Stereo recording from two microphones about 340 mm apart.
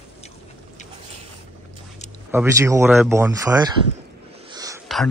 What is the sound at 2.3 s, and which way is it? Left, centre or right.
Speech, centre.